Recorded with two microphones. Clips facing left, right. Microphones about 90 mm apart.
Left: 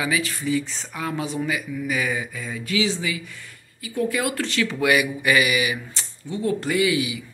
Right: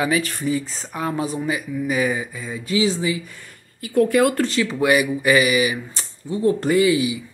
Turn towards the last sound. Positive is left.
turn(degrees=-30)  # may be behind; listen again after turning